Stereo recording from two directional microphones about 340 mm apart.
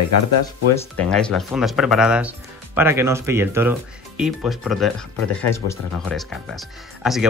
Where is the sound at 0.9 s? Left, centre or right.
Centre.